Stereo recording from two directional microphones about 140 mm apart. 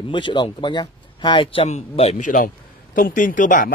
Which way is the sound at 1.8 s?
50° left (ahead or behind).